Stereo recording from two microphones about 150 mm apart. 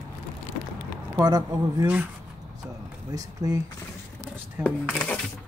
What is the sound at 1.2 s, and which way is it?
Speech, 25° right (ahead or behind).